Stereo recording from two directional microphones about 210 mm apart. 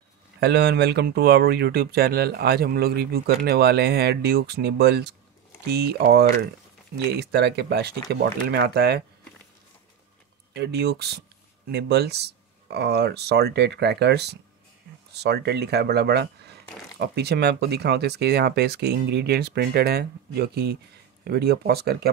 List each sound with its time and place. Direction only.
0.4 s speech: 50° right (ahead or behind)
10.5 s speech: 55° right (ahead or behind)